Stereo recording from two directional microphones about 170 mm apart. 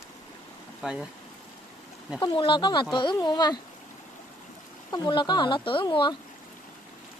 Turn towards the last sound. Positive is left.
turn(degrees=30)  # may be behind; listen again after turning